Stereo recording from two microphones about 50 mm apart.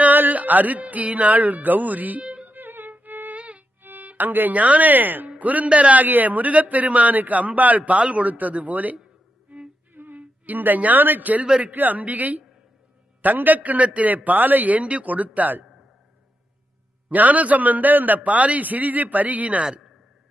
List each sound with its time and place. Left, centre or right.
0.0 s music: right
3.3 s violin: right
3.8 s a man's voice: right
10.1 s speech: right
11.4 s a man's voice: centre
11.7 s a man's voice: right
17.1 s a man's voice: right